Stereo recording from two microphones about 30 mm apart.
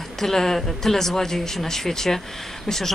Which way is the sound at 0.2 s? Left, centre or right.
Centre.